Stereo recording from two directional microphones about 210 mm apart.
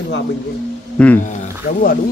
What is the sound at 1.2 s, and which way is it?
Speech, 40° left (ahead or behind).